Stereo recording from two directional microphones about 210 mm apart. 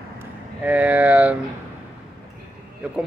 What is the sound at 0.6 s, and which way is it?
Speech, 5° right (ahead or behind).